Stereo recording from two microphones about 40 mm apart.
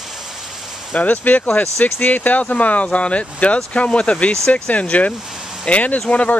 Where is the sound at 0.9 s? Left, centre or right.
Left.